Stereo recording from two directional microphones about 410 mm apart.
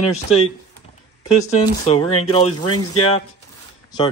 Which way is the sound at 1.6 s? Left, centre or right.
Centre.